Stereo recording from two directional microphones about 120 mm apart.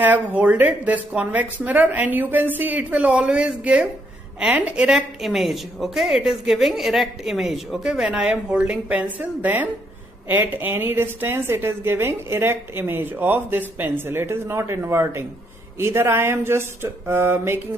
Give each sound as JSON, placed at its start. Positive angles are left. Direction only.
{"t": 0.0, "sound": "a woman's voice", "side_deg": -15}